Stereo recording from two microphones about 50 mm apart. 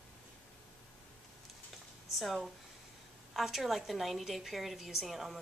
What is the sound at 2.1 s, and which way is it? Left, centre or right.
A woman's voice, centre.